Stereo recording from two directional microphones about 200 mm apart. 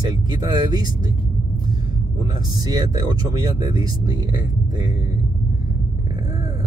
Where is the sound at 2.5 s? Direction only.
20° right (ahead or behind).